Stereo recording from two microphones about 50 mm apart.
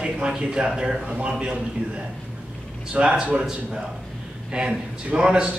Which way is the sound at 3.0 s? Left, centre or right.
Centre.